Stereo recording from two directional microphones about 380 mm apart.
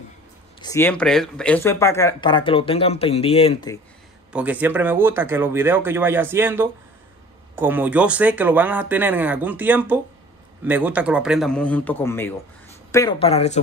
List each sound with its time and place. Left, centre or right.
0.6 s speech: centre
4.3 s speech: centre